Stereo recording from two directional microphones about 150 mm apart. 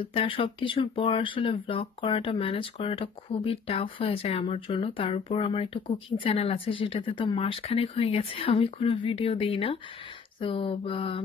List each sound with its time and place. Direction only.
0.0 s speech: 35° left (ahead or behind)